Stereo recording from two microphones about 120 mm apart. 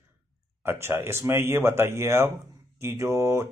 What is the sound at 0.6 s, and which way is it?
Speech, 20° right (ahead or behind).